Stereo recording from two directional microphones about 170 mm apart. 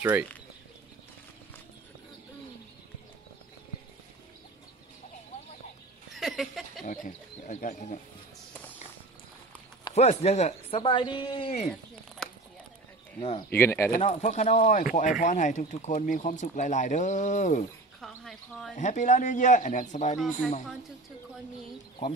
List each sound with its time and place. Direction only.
0.0 s speech: 10° right (ahead or behind)
6.1 s a sound: centre (ahead or behind)
6.8 s speech: 50° left (ahead or behind)
9.9 s speech: 40° left (ahead or behind)
10.8 s a woman's voice: 25° left (ahead or behind)
12.2 s a sound: 5° left (ahead or behind)
13.5 s speech: 15° left (ahead or behind)
13.9 s speech: 45° left (ahead or behind)
18.0 s speech: centre (ahead or behind)
18.8 s speech: 45° left (ahead or behind)